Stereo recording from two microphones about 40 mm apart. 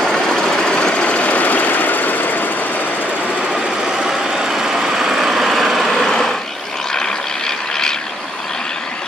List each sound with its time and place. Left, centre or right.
0.0 s engine: centre; by 2.5 s left
3.5 s vehicle: centre
7.0 s vehicle: centre